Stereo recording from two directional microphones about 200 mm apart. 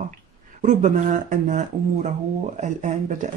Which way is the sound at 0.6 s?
40° right (ahead or behind).